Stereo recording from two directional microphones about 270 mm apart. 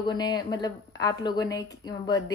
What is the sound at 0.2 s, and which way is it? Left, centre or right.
A woman's voice, centre.